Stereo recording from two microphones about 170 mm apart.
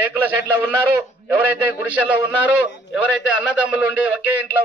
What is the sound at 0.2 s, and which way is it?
A man's voice, 10° right (ahead or behind).